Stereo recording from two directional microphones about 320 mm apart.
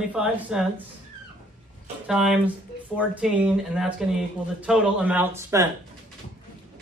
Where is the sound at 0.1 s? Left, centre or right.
Centre.